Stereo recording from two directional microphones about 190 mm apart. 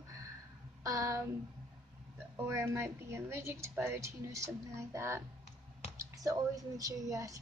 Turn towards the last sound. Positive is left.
turn(degrees=-15)  # may be behind; listen again after turning